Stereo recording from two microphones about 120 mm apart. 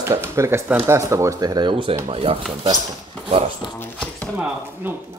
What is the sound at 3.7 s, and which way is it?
Speech, 15° left (ahead or behind).